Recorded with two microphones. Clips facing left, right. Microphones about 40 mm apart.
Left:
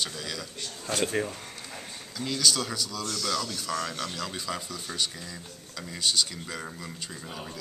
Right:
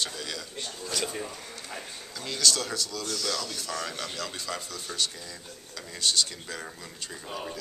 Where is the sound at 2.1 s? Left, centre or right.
Centre.